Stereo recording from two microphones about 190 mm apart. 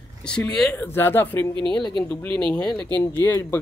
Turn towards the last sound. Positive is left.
turn(degrees=15)  # may be behind; listen again after turning